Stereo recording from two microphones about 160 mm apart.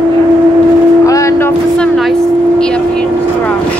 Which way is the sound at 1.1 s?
20° left (ahead or behind).